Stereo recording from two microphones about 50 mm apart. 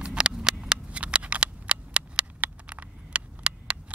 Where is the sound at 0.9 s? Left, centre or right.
Right.